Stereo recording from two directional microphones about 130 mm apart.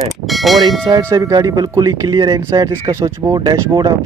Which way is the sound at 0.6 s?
30° right (ahead or behind).